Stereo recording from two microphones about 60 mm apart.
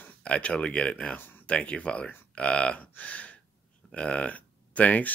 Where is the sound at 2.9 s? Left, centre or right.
Left.